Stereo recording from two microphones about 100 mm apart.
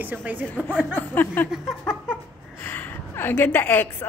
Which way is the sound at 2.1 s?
20° left (ahead or behind).